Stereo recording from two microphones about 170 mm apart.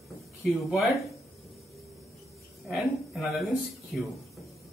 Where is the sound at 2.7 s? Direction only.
Centre (ahead or behind).